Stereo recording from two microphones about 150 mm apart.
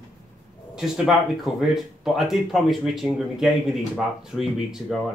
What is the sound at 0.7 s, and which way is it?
Speech, 5° right (ahead or behind).